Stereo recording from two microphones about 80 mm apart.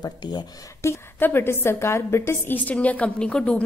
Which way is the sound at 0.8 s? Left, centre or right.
Left.